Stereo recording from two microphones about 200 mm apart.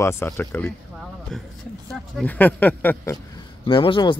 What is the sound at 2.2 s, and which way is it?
Speech, 10° left (ahead or behind).